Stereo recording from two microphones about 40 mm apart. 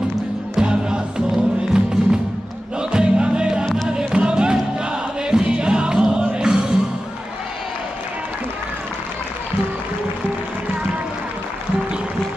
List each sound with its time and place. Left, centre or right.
0.6 s music: right